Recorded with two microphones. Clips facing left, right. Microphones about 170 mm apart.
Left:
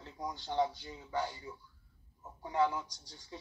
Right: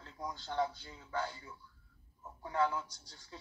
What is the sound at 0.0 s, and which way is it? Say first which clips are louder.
Speech: left 2 dB; 20° left (ahead or behind).